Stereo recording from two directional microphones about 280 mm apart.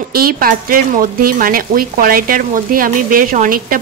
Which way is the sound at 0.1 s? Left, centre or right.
Right.